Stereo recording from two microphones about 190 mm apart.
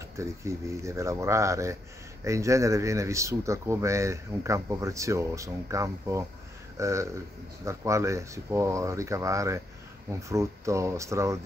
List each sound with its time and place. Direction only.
0.2 s speech: 15° right (ahead or behind)